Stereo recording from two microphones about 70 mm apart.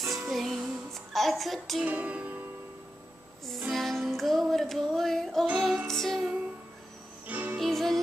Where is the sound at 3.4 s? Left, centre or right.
Centre.